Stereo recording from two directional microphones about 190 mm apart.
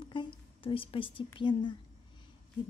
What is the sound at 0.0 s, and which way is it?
Speech, 25° left (ahead or behind).